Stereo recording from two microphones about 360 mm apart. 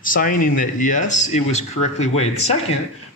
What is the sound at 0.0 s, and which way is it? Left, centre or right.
Speech, left.